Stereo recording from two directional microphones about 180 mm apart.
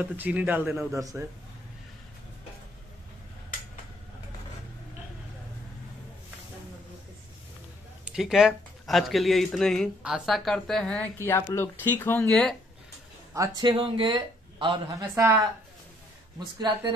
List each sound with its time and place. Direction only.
0.0 s a man's voice: 10° right (ahead or behind)
8.0 s speech: 5° right (ahead or behind)
13.3 s speech: 20° right (ahead or behind)
16.5 s speech: 25° right (ahead or behind)